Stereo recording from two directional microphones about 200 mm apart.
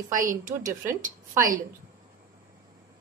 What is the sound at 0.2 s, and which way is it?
A woman's voice, 40° right (ahead or behind).